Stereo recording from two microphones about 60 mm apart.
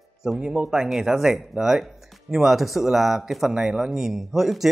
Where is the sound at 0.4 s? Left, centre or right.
Centre.